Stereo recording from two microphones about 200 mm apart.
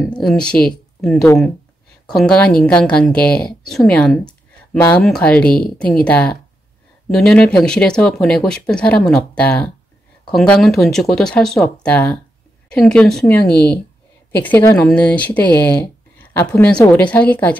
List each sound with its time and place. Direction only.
0.0 s speech: centre (ahead or behind)
13.5 s speech: 55° left (ahead or behind)
14.3 s speech: 10° left (ahead or behind)